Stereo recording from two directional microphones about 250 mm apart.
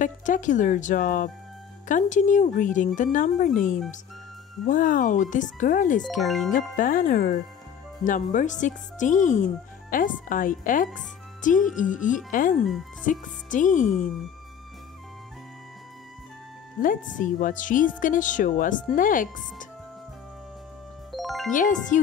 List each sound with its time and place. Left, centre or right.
0.0 s speech: left
6.0 s speech: centre
6.5 s speech: left
16.8 s speech: left
21.1 s music: centre
21.5 s speech: left